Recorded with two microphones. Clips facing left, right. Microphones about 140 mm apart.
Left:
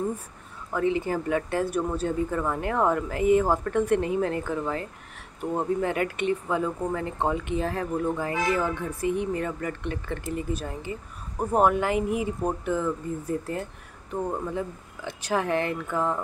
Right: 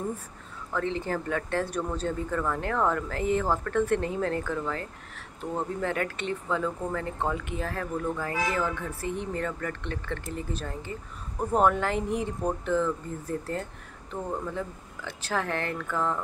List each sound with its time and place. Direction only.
0.7 s speech: 10° left (ahead or behind)
15.0 s speech: 15° left (ahead or behind)